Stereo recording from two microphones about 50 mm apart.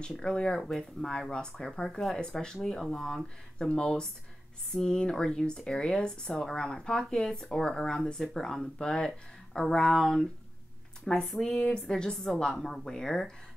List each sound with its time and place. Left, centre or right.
0.0 s speech: centre